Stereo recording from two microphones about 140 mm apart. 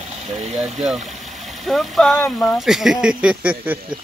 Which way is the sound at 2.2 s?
15° left (ahead or behind).